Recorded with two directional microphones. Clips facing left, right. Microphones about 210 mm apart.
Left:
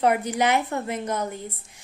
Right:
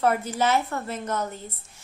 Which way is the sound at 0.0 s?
15° left (ahead or behind).